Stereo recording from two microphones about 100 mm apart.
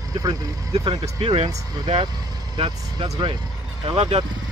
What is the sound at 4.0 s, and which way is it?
Speech, 90° right.